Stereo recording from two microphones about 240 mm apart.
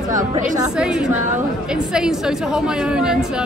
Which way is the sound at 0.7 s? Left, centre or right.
Centre.